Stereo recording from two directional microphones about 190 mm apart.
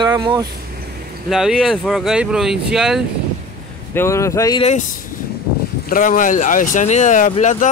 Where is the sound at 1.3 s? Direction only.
Centre (ahead or behind).